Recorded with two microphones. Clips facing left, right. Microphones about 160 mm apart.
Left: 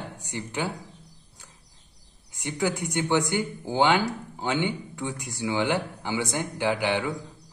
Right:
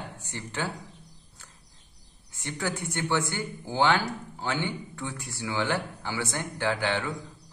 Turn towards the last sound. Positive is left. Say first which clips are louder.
# left 3 dB
turn(degrees=15)  # may be behind; listen again after turning